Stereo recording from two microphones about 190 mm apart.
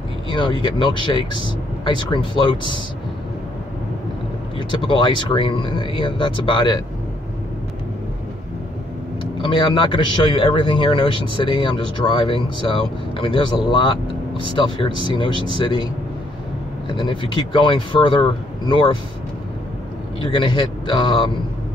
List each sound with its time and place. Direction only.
0.3 s speech: 25° left (ahead or behind)
4.6 s speech: 25° left (ahead or behind)
9.4 s speech: 25° left (ahead or behind)
16.9 s speech: 25° left (ahead or behind)
20.2 s speech: 25° left (ahead or behind)